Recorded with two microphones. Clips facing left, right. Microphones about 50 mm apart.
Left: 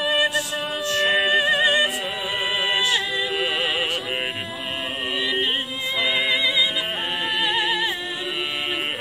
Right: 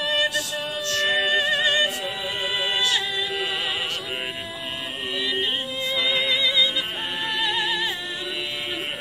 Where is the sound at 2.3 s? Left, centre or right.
Centre.